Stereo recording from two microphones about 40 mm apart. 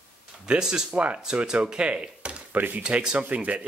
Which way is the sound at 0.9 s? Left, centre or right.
Right.